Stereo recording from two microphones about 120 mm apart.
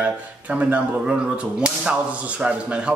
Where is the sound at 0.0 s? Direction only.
10° right (ahead or behind).